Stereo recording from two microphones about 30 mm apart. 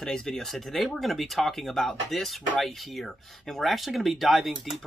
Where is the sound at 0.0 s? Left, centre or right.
Left.